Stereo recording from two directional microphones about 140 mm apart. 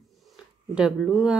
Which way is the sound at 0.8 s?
5° right (ahead or behind).